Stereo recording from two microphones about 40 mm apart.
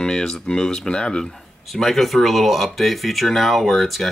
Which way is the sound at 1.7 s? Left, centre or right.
Centre.